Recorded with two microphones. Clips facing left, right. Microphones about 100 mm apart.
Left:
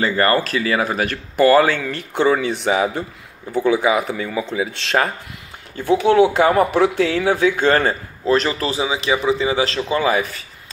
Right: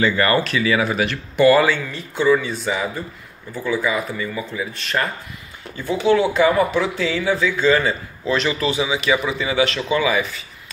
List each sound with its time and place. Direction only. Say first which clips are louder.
0.0 s a man's voice: left 1 dB; 40° left (ahead or behind)
1.9 s speech: even; 65° left (ahead or behind); by 5.1 s 85° left
5.8 s speech: left 4 dB; 60° left (ahead or behind)
8.3 s a man's voice: left 2 dB; 40° left (ahead or behind)